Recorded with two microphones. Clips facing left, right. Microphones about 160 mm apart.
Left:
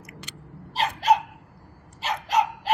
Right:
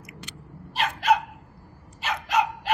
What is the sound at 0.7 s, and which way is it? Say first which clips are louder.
Dog: left 1 dB; 35° left (ahead or behind).